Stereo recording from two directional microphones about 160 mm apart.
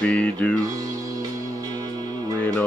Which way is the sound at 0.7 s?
20° right (ahead or behind).